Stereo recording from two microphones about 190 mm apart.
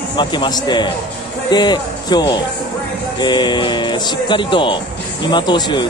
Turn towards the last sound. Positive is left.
turn(degrees=25)  # may be behind; listen again after turning